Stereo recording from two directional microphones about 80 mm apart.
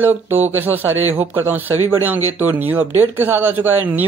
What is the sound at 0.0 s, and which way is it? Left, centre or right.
Speech, right.